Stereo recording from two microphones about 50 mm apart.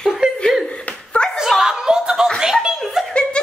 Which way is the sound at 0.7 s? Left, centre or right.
Left.